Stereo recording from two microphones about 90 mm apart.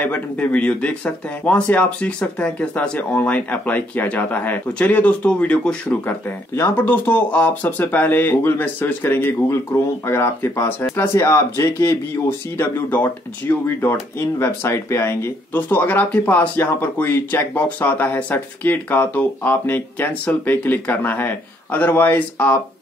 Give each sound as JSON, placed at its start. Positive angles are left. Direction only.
{"t": 0.0, "sound": "speech", "side_deg": 15}
{"t": 6.0, "sound": "speech", "side_deg": 25}
{"t": 15.5, "sound": "speech", "side_deg": 20}